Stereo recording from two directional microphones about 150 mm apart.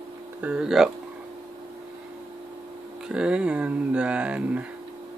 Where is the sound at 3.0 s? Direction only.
5° right (ahead or behind).